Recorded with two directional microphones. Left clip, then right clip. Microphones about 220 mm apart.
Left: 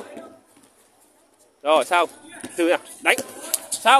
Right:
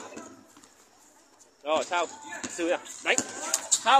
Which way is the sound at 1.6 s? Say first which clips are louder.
Left 9 dB; 50° left (ahead or behind).